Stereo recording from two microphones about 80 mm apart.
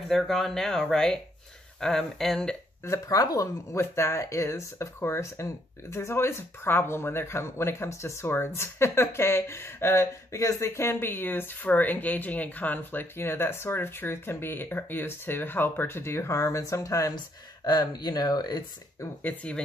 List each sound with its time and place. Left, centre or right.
0.1 s speech: centre
2.8 s speech: left
3.7 s speech: left
17.6 s speech: left
19.2 s speech: centre